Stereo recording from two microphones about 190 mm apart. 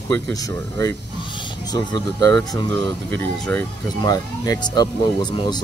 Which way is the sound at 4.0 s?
20° left (ahead or behind).